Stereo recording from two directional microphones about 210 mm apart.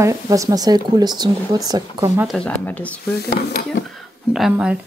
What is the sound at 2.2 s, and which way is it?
Speech, 5° left (ahead or behind).